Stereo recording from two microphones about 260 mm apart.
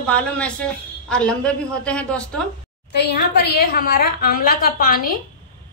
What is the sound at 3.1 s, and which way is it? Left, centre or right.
A woman's voice, left.